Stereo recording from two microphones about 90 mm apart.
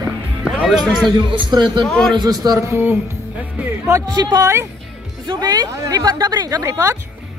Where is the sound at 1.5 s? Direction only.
50° right (ahead or behind).